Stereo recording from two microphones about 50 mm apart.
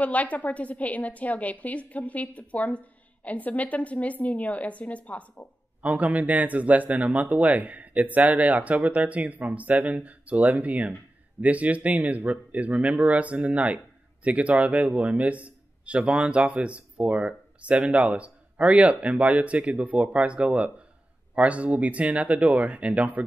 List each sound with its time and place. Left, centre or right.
0.0 s a woman's voice: left
5.8 s a man's voice: right